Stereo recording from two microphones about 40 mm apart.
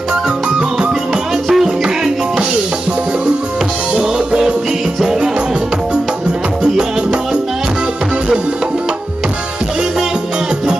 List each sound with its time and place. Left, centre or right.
0.1 s music: right
1.5 s music: centre
3.9 s music: right
6.6 s music: centre